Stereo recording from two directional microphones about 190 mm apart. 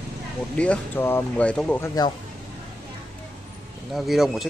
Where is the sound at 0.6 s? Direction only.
10° left (ahead or behind).